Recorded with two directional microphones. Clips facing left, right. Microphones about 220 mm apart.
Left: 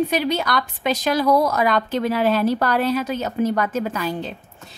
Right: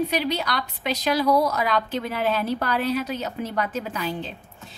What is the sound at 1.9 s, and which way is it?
Speech, 85° left.